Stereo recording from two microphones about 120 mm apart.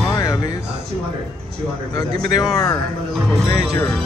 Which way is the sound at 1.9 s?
30° left (ahead or behind).